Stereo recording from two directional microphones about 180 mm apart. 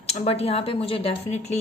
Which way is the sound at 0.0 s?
35° left (ahead or behind).